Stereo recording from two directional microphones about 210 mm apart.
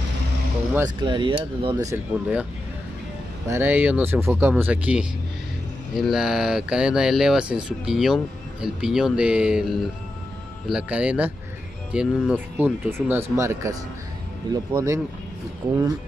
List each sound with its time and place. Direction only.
0.7 s speech: 20° right (ahead or behind)
3.4 s speech: 10° right (ahead or behind)